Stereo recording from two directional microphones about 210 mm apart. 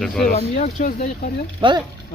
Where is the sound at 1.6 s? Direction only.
25° right (ahead or behind).